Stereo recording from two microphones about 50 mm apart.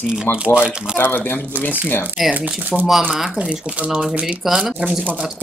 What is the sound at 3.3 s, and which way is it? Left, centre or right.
Speech, right.